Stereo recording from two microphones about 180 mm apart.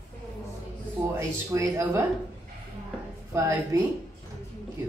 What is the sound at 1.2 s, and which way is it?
Speech, 15° right (ahead or behind).